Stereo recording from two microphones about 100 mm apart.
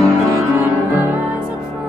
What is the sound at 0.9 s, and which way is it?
Music, 20° right (ahead or behind).